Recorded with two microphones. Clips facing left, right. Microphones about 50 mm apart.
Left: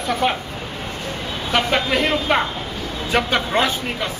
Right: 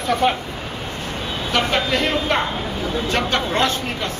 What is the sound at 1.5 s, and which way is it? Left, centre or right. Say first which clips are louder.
A man's voice: left 1 dB; centre.